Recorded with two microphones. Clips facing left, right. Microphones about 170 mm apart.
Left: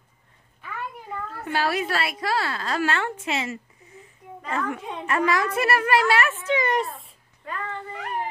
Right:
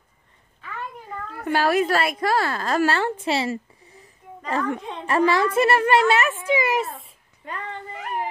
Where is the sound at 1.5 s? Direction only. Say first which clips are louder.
Right 5 dB; 50° right (ahead or behind); by 7.1 s centre (ahead or behind).